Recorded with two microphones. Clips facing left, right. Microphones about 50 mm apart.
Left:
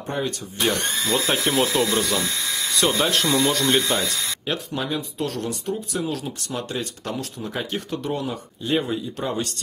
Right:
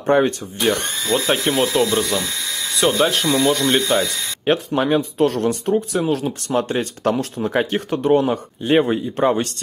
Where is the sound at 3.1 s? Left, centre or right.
Centre.